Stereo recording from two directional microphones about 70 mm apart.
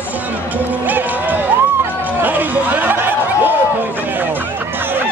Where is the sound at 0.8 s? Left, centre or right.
Right.